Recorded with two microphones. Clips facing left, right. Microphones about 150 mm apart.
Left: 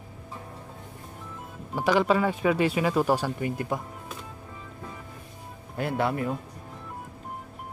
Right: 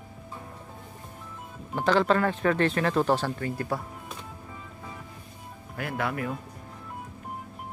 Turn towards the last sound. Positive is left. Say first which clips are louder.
# left 4 dB
turn(degrees=25)  # may be behind; listen again after turning